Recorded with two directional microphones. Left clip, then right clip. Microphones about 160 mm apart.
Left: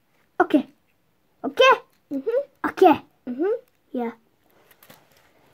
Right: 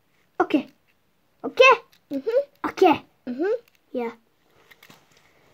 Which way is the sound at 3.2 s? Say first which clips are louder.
Left 1 dB; 25° right (ahead or behind).